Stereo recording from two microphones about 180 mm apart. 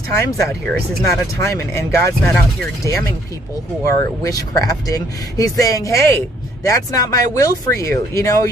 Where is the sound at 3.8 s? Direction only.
20° left (ahead or behind).